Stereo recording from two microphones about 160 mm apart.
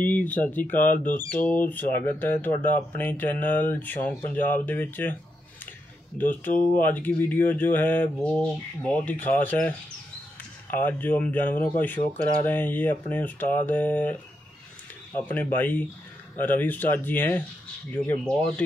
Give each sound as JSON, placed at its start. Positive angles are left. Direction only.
{"t": 0.0, "sound": "speech", "side_deg": 10}
{"t": 0.9, "sound": "speech", "side_deg": 60}
{"t": 1.4, "sound": "speech", "side_deg": 10}
{"t": 6.1, "sound": "speech", "side_deg": 10}
{"t": 15.1, "sound": "speech", "side_deg": 10}